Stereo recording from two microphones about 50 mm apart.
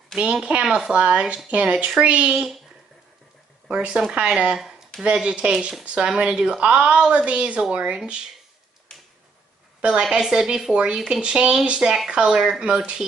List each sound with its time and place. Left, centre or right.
0.1 s speech: centre
3.7 s speech: right
4.6 s a sound: centre
5.2 s speech: right
9.8 s a woman's voice: centre
10.1 s speech: centre